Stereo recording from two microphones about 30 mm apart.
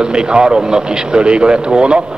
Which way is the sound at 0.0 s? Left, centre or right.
Right.